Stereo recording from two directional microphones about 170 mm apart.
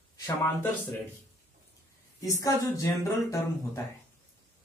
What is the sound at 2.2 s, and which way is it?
Speech, 20° left (ahead or behind).